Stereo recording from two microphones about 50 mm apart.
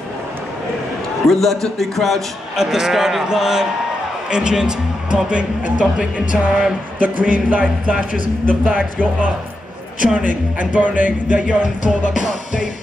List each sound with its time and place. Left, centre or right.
1.2 s a man's voice: centre
2.5 s a man's voice: centre; by 7.6 s right
8.7 s speech: left
10.0 s speech: right